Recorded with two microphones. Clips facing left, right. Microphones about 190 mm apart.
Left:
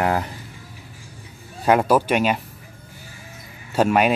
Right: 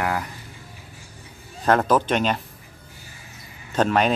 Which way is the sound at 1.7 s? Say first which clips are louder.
Left 2 dB; 10° left (ahead or behind).